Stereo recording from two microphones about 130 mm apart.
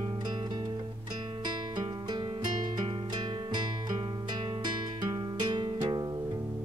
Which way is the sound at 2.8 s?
45° right (ahead or behind).